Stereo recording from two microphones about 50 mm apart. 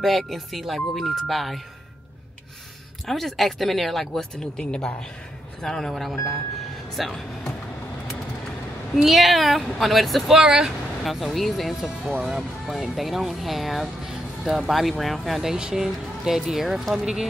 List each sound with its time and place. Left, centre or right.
0.0 s speech: centre
3.1 s speech: centre
8.9 s speech: centre
12.1 s speech: right
12.4 s speech: centre
15.5 s speech: centre